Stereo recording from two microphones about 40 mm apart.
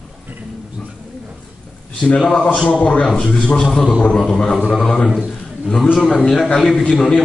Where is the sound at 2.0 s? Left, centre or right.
Left.